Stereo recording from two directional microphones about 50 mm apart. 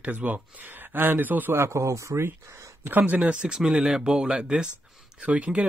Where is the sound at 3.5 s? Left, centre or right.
Centre.